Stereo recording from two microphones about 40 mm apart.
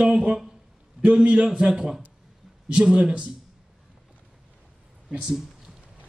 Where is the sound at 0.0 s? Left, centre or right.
Right.